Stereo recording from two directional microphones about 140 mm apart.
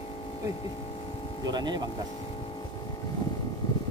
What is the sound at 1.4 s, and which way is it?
Speech, 30° right (ahead or behind).